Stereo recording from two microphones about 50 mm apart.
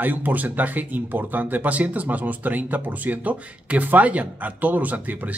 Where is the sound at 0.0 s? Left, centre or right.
Right.